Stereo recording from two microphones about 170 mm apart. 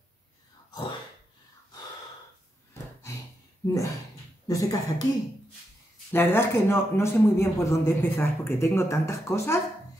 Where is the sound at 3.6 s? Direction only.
15° left (ahead or behind).